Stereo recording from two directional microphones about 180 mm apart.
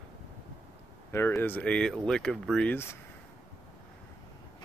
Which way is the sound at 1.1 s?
15° left (ahead or behind).